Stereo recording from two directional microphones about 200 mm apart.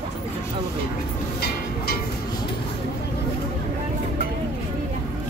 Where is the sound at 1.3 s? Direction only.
50° left (ahead or behind).